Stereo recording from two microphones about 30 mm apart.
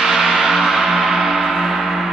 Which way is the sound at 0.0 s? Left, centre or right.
Centre.